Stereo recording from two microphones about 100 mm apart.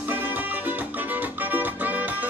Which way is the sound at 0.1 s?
20° right (ahead or behind).